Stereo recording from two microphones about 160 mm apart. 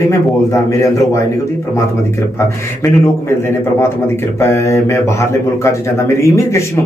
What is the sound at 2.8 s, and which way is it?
A man's voice, 15° left (ahead or behind).